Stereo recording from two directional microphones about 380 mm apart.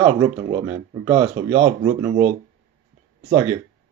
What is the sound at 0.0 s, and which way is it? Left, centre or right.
Speech, centre.